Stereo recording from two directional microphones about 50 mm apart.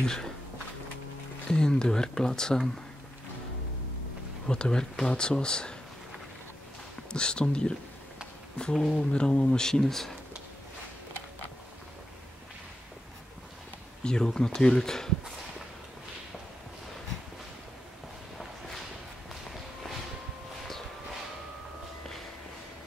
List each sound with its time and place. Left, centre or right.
0.0 s speech: centre
1.5 s speech: centre
4.5 s speech: centre
7.1 s speech: centre
8.7 s speech: centre
9.1 s speech: centre
14.0 s speech: centre